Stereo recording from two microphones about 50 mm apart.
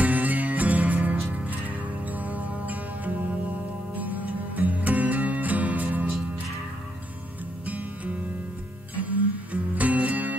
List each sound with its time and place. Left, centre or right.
0.0 s music: right
0.9 s music: right
1.3 s music: right
4.6 s music: right
7.6 s music: right